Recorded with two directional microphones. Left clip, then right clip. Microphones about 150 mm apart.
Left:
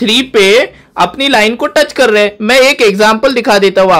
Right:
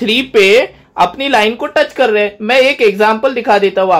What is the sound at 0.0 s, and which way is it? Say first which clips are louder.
Speech: left 2 dB; 20° left (ahead or behind).